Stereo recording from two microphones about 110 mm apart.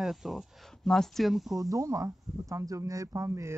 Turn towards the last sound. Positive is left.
turn(degrees=-30)  # may be behind; listen again after turning